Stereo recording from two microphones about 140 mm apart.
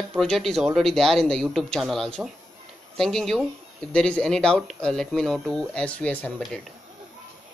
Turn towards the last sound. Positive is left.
turn(degrees=10)  # may be behind; listen again after turning